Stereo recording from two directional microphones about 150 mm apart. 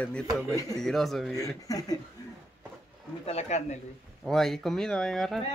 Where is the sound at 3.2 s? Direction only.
45° left (ahead or behind).